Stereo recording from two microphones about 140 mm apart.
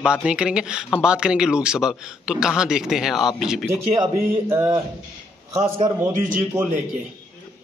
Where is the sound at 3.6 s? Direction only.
20° right (ahead or behind).